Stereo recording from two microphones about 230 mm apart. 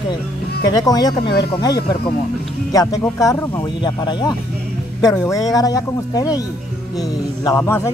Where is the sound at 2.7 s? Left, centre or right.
Centre.